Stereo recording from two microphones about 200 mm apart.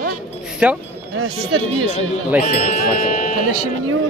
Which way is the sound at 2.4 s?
40° left (ahead or behind).